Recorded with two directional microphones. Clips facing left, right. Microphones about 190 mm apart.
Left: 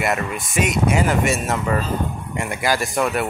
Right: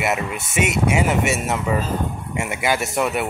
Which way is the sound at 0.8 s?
70° right (ahead or behind).